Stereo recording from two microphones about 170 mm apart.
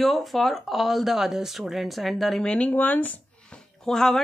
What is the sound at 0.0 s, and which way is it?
Speech, centre (ahead or behind).